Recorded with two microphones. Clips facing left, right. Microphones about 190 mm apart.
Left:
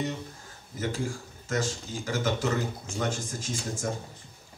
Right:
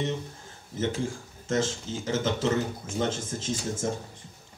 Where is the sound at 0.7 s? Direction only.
25° right (ahead or behind).